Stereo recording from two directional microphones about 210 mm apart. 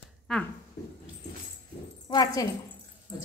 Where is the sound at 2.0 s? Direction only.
20° left (ahead or behind).